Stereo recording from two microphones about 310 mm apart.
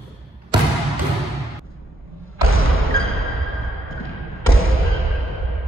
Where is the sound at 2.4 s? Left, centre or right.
Right.